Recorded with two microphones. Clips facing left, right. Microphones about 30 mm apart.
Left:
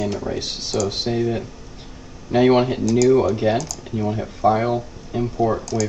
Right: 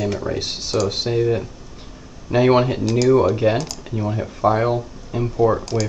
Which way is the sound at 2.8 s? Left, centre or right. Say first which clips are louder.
Left 2 dB; right.